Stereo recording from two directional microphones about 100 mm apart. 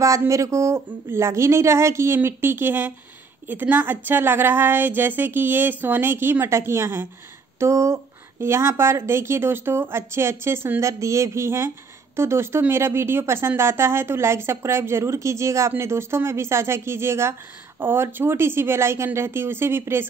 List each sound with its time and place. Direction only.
0.3 s speech: 30° right (ahead or behind)